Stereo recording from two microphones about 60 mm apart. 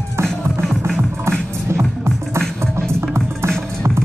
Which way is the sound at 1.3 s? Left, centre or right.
Right.